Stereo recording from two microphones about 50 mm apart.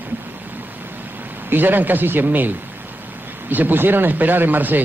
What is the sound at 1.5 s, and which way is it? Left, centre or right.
Speech, right.